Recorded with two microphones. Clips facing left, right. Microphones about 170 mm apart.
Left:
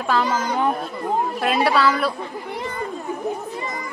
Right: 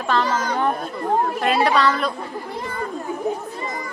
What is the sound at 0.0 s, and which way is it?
A man's voice, 5° left (ahead or behind).